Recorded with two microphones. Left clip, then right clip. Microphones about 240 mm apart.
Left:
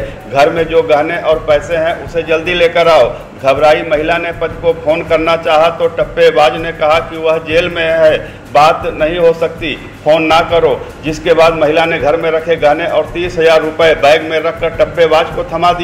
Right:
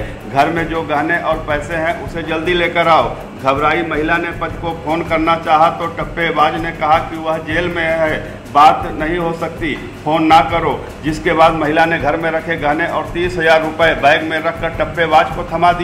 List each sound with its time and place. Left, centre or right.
0.3 s a man's voice: centre